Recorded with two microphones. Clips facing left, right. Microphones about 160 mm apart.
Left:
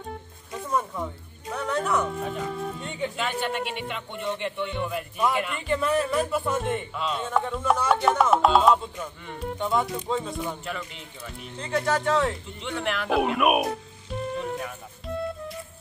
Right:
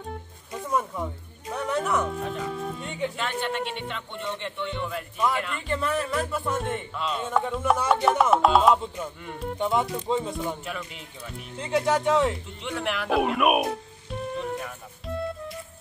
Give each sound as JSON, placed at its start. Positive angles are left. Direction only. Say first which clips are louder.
{"t": 0.0, "sound": "speech", "louder": "even", "side_deg": 0}
{"t": 10.3, "sound": "speech", "louder": "even", "side_deg": 0}
{"t": 11.6, "sound": "speech", "louder": "right 2 dB", "side_deg": -15}
{"t": 12.6, "sound": "music", "louder": "even", "side_deg": -5}